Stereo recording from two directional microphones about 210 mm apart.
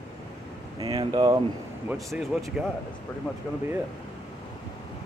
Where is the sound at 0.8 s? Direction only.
20° right (ahead or behind).